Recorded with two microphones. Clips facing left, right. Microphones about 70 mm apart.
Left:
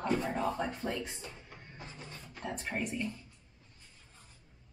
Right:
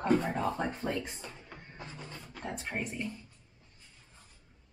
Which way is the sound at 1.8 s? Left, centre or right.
Right.